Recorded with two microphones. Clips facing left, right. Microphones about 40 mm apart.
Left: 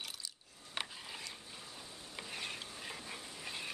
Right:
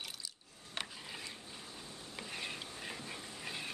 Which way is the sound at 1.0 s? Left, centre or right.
Centre.